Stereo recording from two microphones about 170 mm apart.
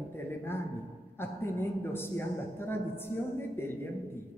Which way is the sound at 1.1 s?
15° left (ahead or behind).